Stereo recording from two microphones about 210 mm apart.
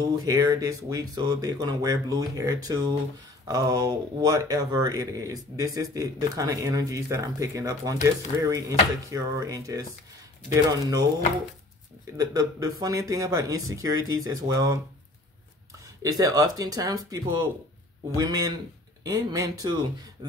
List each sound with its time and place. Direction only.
0.0 s speech: 15° right (ahead or behind)
12.2 s speech: 15° right (ahead or behind)
16.0 s speech: 15° right (ahead or behind)